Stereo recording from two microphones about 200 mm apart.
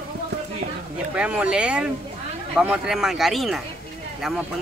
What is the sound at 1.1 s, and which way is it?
Speech, 5° right (ahead or behind).